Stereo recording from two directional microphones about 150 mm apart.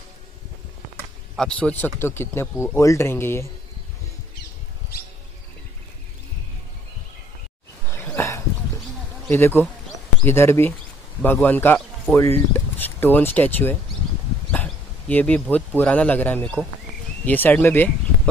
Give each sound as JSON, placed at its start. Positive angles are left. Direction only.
{"t": 1.3, "sound": "speech", "side_deg": 5}
{"t": 7.9, "sound": "a sound", "side_deg": 15}
{"t": 9.3, "sound": "speech", "side_deg": 15}